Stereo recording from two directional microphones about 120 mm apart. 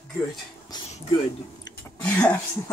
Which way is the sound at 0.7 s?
35° left (ahead or behind).